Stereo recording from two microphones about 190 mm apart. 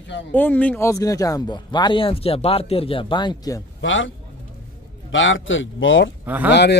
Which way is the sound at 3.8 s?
80° left.